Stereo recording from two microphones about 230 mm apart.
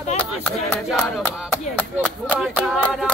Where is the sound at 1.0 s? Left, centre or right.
Centre.